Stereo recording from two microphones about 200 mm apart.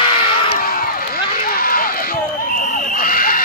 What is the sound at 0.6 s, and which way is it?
Run, 45° left (ahead or behind).